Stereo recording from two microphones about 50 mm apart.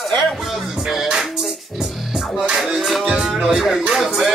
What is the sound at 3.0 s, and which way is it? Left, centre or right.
Music, centre.